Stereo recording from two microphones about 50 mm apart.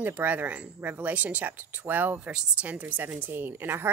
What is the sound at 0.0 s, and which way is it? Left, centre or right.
Speech, right.